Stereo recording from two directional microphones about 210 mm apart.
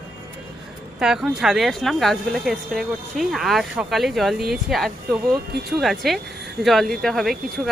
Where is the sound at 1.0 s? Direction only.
5° right (ahead or behind).